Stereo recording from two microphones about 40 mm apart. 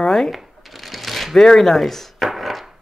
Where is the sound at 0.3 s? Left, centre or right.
Centre.